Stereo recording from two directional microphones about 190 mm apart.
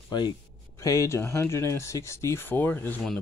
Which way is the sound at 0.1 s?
25° left (ahead or behind).